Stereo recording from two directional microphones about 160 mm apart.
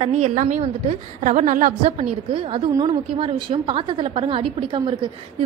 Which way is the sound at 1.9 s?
35° right (ahead or behind).